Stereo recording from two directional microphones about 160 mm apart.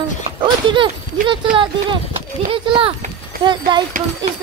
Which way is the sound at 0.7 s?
30° right (ahead or behind).